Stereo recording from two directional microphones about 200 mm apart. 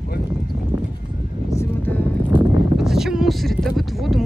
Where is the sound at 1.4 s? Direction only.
10° left (ahead or behind).